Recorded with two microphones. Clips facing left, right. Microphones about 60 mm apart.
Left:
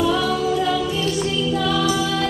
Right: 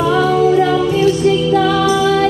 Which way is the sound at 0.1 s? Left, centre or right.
Right.